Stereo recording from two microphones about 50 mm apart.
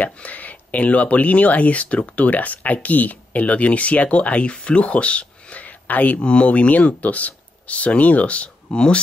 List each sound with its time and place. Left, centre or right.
0.0 s speech: left